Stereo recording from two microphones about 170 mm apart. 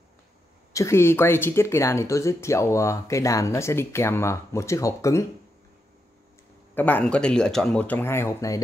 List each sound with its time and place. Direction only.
0.7 s speech: 15° left (ahead or behind)
6.7 s speech: 10° left (ahead or behind)